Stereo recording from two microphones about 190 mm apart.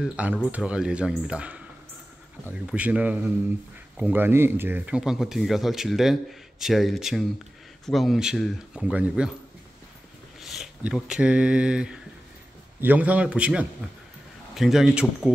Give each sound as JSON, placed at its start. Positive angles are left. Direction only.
{"t": 0.0, "sound": "a man's voice", "side_deg": -5}
{"t": 10.4, "sound": "a man's voice", "side_deg": 0}